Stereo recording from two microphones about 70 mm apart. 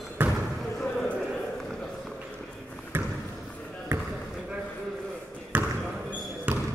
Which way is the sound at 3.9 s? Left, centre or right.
Right.